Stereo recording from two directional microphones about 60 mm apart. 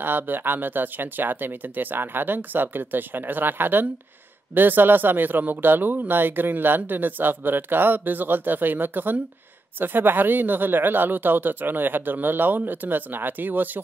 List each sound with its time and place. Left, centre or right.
0.0 s speech: right